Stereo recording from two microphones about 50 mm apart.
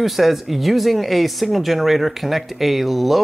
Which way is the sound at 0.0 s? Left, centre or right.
Centre.